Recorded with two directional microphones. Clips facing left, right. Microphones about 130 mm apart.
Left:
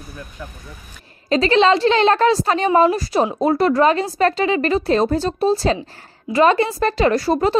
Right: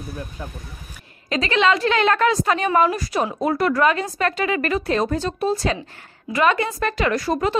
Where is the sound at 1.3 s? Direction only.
35° left (ahead or behind).